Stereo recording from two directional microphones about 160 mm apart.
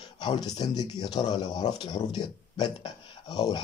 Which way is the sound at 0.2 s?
25° left (ahead or behind).